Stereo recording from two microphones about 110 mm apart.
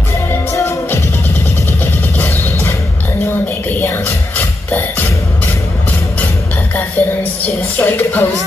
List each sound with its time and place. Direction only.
0.3 s music: 25° left (ahead or behind)
1.7 s vehicle: 15° left (ahead or behind)
3.6 s music: 15° left (ahead or behind)
4.6 s beatboxing: 15° left (ahead or behind)
7.0 s music: 15° left (ahead or behind)